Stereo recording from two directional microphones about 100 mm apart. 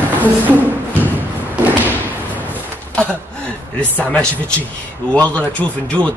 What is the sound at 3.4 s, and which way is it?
Speech, 15° left (ahead or behind).